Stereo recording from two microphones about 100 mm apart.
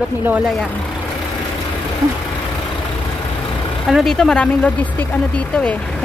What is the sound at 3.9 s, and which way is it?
Speech, centre (ahead or behind).